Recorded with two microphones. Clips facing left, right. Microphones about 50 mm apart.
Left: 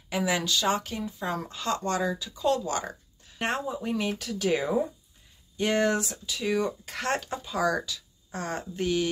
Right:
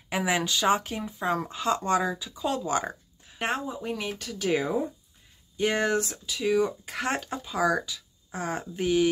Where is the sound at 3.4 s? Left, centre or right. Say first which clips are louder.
Even; centre.